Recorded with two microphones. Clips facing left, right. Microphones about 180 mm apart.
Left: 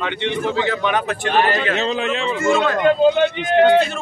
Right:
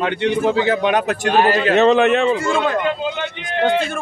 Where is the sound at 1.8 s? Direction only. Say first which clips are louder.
Right 8 dB; 65° right (ahead or behind).